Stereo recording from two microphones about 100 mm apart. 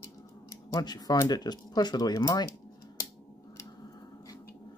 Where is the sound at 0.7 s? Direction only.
45° left (ahead or behind).